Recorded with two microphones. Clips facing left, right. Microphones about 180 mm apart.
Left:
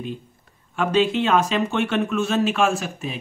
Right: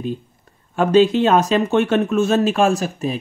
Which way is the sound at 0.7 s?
40° right (ahead or behind).